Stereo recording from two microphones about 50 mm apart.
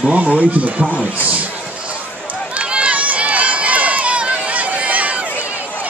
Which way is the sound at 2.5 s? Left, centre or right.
Right.